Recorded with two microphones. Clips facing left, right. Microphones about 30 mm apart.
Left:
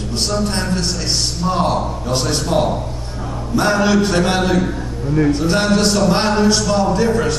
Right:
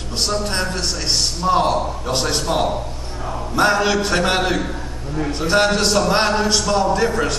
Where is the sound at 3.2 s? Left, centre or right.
Centre; by 6.0 s right.